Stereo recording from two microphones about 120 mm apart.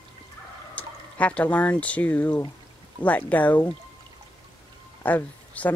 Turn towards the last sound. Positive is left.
turn(degrees=15)  # may be behind; listen again after turning